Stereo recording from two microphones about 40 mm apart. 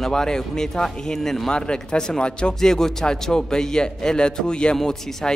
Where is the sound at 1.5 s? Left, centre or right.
Left.